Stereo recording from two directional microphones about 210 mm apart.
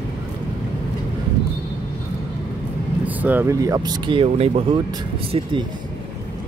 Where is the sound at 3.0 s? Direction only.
10° right (ahead or behind); by 4.8 s 30° right (ahead or behind).